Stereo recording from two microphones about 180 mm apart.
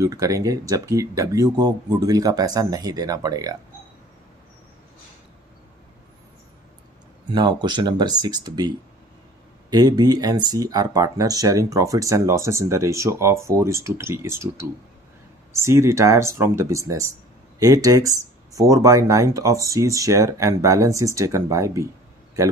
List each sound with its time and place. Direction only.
0.0 s speech: 20° right (ahead or behind)
7.2 s speech: 25° right (ahead or behind)